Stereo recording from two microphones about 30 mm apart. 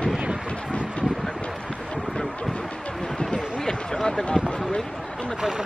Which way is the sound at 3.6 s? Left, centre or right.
Left.